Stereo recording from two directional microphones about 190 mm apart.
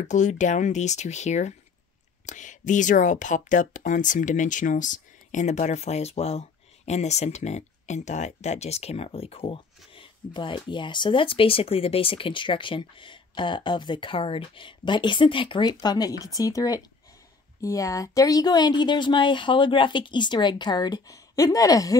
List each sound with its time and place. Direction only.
0.0 s speech: 40° left (ahead or behind); by 21.9 s 20° left (ahead or behind)